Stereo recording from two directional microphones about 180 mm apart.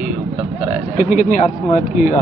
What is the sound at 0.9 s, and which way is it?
Speech, 45° left (ahead or behind).